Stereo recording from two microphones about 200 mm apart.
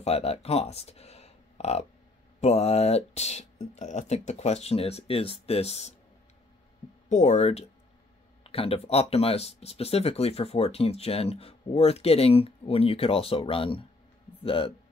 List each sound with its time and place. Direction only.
0.0 s speech: 30° left (ahead or behind)
7.1 s speech: 35° left (ahead or behind)